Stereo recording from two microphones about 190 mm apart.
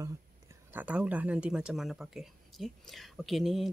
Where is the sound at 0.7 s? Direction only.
5° right (ahead or behind).